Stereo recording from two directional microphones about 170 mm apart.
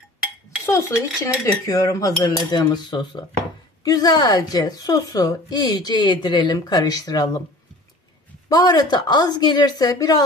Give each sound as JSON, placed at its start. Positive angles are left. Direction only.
{"t": 0.7, "sound": "a woman's voice", "side_deg": 15}
{"t": 8.5, "sound": "a woman's voice", "side_deg": 25}